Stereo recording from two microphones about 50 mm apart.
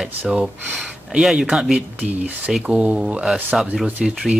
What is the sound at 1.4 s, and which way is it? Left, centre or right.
Speech, centre.